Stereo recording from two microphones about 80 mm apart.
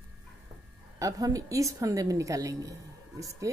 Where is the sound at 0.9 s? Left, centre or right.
Right.